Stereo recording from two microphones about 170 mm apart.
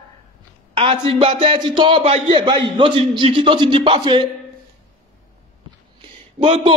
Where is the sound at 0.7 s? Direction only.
30° right (ahead or behind).